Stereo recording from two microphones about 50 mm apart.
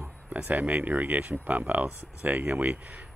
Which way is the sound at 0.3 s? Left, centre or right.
Right.